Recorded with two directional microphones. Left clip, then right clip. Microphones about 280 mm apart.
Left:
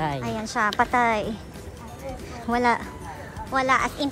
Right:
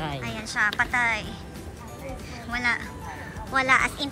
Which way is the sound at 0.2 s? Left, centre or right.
Centre.